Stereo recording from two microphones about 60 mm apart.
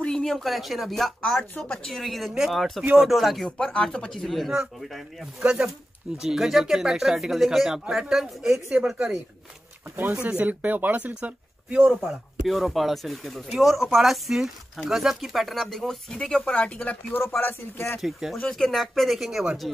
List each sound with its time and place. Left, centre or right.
0.0 s speech: centre
2.0 s speech: centre
3.4 s speech: centre
5.4 s speech: centre
8.6 s speech: centre
9.8 s speech: right
10.1 s speech: centre
12.4 s speech: centre
16.5 s speech: left
17.4 s speech: left
18.0 s speech: centre